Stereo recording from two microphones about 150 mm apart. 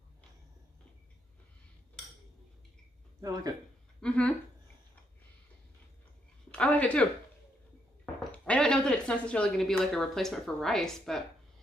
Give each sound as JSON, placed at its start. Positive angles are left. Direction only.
{"t": 3.2, "sound": "speech", "side_deg": -25}
{"t": 4.0, "sound": "speech", "side_deg": 10}
{"t": 6.5, "sound": "a sound", "side_deg": 10}
{"t": 8.3, "sound": "speech", "side_deg": 5}